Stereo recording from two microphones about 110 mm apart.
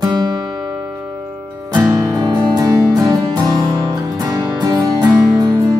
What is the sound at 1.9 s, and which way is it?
Music, 30° right (ahead or behind).